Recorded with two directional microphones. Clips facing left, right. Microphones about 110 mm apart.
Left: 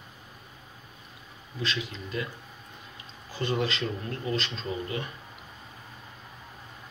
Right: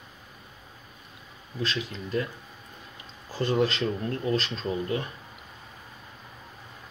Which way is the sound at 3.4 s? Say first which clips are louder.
Right 4 dB; 40° right (ahead or behind).